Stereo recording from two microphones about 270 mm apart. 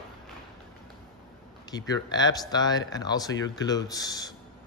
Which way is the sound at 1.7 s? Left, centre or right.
Centre.